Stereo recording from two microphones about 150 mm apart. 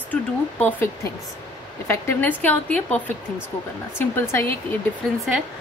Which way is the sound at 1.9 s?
15° left (ahead or behind).